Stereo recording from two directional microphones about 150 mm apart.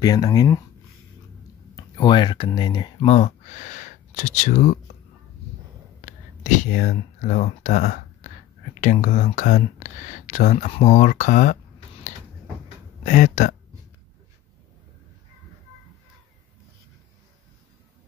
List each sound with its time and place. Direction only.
0.0 s speech: 25° left (ahead or behind)
1.8 s speech: 30° left (ahead or behind)
3.1 s speech: 50° left (ahead or behind)
6.0 s speech: 55° left (ahead or behind)
13.0 s speech: 55° left (ahead or behind)